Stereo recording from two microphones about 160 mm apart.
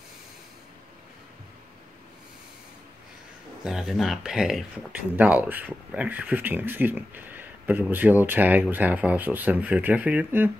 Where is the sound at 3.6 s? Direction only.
5° right (ahead or behind).